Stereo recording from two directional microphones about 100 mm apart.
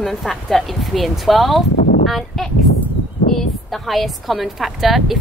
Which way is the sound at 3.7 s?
Centre (ahead or behind).